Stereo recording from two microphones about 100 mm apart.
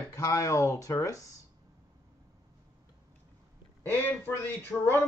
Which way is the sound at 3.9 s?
25° left (ahead or behind).